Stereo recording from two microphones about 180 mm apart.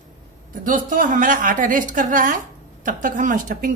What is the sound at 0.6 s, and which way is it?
A woman's voice, 50° right (ahead or behind).